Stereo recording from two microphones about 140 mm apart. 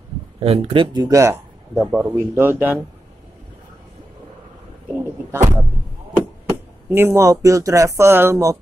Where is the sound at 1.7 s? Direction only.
5° right (ahead or behind).